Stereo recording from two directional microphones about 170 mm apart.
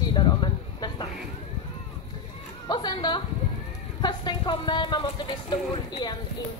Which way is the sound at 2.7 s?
25° left (ahead or behind).